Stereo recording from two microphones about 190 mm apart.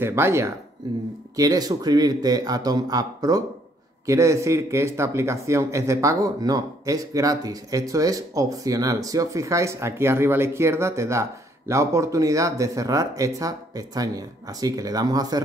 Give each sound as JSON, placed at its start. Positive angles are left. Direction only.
{"t": 0.0, "sound": "a man's voice", "side_deg": -15}